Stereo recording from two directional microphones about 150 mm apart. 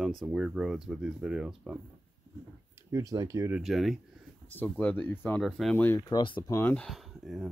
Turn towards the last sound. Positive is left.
turn(degrees=0)  # may be behind; listen again after turning